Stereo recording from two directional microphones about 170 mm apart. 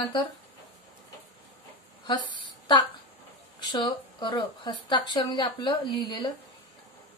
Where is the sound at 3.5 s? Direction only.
25° left (ahead or behind).